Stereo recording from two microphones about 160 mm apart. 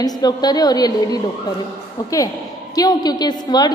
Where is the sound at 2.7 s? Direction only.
25° left (ahead or behind).